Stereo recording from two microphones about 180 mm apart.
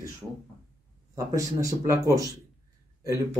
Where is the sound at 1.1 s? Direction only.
20° right (ahead or behind).